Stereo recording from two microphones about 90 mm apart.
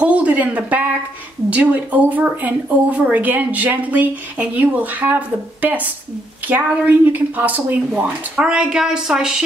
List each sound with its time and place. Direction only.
0.0 s a woman's voice: 15° right (ahead or behind)